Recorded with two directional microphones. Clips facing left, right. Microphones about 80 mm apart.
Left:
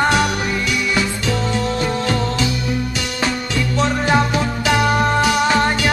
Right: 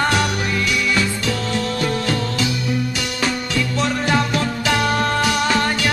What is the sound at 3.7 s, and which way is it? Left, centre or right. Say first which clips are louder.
Music: left 4 dB; left.